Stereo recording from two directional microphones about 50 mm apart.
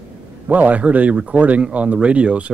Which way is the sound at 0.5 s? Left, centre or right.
Right.